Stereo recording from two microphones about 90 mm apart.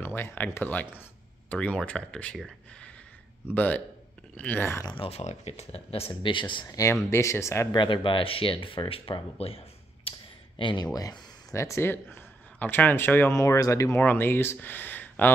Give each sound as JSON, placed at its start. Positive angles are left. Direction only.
{"t": 0.0, "sound": "speech", "side_deg": 25}
{"t": 3.5, "sound": "speech", "side_deg": 15}
{"t": 5.7, "sound": "speech", "side_deg": 90}
{"t": 6.6, "sound": "speech", "side_deg": 40}
{"t": 7.1, "sound": "speech", "side_deg": 30}
{"t": 7.7, "sound": "speech", "side_deg": 65}
{"t": 10.1, "sound": "a sound", "side_deg": 90}
{"t": 10.6, "sound": "speech", "side_deg": 65}
{"t": 10.9, "sound": "a man's voice", "side_deg": 45}
{"t": 13.4, "sound": "speech", "side_deg": 40}
{"t": 13.9, "sound": "speech", "side_deg": 25}